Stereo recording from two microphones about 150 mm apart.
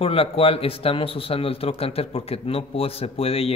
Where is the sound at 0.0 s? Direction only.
40° left (ahead or behind).